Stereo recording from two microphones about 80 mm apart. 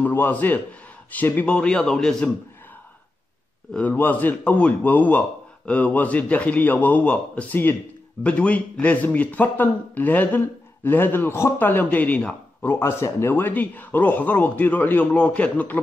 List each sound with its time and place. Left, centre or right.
0.0 s a man's voice: left
3.9 s a man's voice: left
12.6 s a man's voice: left